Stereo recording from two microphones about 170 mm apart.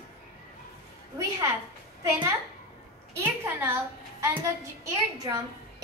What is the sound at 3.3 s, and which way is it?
A woman's voice, 10° right (ahead or behind).